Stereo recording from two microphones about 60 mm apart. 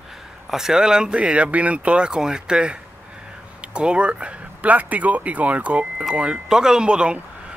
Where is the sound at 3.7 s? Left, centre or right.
Centre.